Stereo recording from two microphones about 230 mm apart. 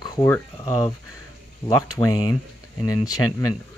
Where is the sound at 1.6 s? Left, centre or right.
Centre.